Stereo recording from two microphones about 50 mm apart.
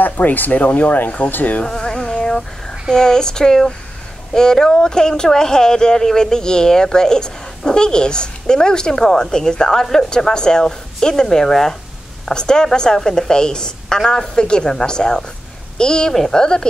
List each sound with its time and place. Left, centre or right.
0.0 s speech: left
1.7 s insect: centre
2.9 s speech: centre